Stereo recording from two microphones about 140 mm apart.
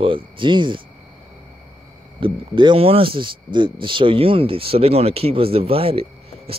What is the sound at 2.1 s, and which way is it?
Speech, 35° right (ahead or behind).